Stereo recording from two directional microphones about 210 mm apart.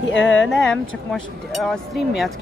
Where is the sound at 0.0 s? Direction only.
60° left (ahead or behind).